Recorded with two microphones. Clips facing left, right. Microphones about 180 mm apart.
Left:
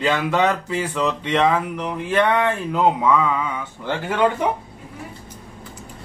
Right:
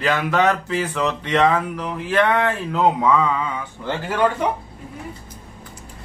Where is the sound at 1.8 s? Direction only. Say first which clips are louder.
Even; 25° left (ahead or behind).